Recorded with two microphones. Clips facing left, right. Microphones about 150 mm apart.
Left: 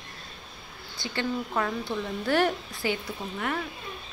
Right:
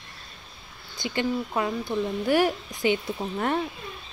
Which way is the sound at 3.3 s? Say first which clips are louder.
Right 5 dB; 35° right (ahead or behind).